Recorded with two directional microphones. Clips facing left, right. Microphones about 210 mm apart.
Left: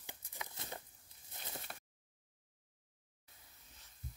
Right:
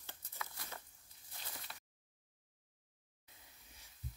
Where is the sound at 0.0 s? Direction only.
15° left (ahead or behind).